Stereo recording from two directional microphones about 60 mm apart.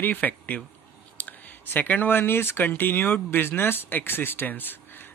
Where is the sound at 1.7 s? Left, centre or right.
Left.